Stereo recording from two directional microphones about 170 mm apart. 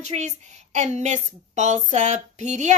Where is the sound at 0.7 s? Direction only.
40° right (ahead or behind).